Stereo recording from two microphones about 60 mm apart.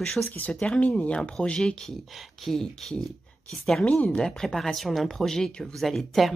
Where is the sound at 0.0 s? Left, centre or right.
Centre.